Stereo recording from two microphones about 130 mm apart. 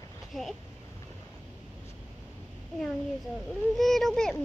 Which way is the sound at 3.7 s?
Centre (ahead or behind).